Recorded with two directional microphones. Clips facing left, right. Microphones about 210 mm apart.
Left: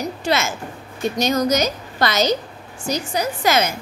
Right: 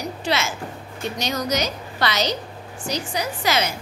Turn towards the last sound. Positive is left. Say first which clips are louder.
# left 4 dB
turn(degrees=50)  # may be behind; listen again after turning